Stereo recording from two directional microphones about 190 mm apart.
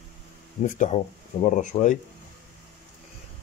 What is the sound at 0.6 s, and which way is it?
Speech, 40° left (ahead or behind).